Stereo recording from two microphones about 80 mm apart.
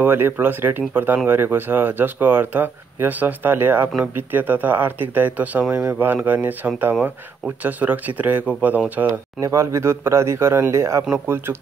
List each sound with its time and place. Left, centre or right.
0.0 s speech: right
9.4 s speech: right